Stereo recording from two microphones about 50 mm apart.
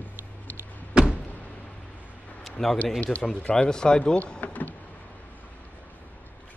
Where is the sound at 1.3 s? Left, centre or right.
Left.